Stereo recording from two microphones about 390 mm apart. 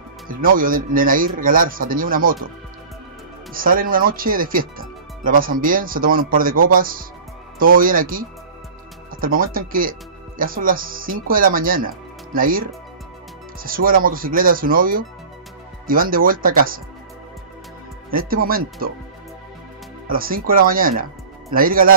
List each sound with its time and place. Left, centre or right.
0.3 s speech: right
3.5 s speech: right
18.1 s speech: right
20.1 s speech: right